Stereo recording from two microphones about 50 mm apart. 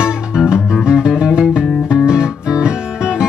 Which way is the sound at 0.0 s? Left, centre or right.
Centre.